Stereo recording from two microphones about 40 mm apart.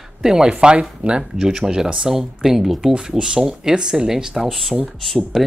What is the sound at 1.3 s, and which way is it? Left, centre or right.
Speech, centre.